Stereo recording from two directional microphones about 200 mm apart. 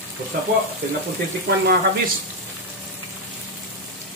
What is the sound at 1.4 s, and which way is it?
Speech, 55° right (ahead or behind).